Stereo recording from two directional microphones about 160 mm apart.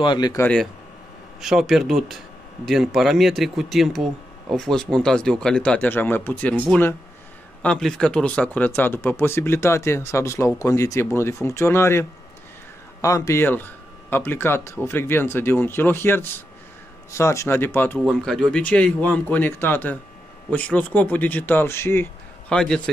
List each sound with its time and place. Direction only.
0.0 s speech: 30° left (ahead or behind)
0.4 s a man's voice: 5° left (ahead or behind)
7.6 s speech: 5° left (ahead or behind)
17.9 s a man's voice: 5° left (ahead or behind)